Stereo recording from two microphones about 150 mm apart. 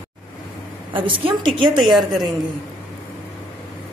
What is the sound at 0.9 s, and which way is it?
Speech, 35° right (ahead or behind).